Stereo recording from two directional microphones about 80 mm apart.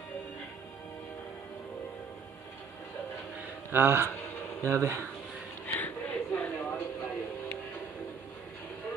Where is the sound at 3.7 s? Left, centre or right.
Right.